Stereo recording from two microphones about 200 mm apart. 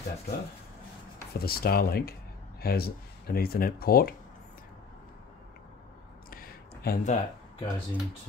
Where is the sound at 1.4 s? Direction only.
50° left (ahead or behind).